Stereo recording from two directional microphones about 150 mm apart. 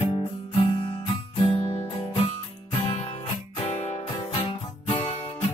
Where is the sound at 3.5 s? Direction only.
45° left (ahead or behind).